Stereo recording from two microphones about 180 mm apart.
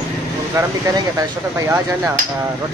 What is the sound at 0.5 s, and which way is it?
Speech, 20° right (ahead or behind).